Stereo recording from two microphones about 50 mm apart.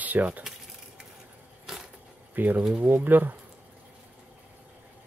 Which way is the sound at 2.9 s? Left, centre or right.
Right.